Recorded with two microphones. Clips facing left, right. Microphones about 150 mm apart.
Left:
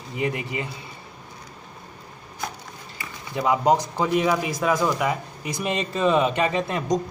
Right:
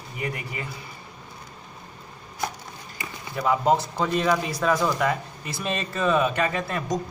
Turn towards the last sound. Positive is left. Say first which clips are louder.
# left 3 dB
turn(degrees=20)  # may be behind; listen again after turning